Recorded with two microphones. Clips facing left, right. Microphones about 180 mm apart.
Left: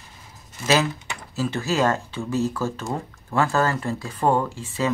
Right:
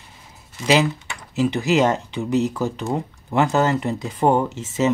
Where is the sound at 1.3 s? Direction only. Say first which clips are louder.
Right 6 dB; 15° right (ahead or behind).